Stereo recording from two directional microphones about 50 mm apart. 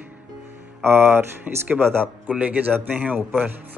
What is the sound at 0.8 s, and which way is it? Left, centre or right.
A man's voice, right.